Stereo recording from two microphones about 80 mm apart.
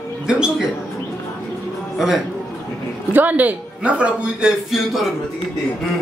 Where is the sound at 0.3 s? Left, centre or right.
Centre.